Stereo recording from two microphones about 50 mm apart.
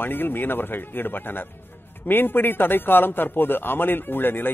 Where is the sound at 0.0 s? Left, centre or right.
Left.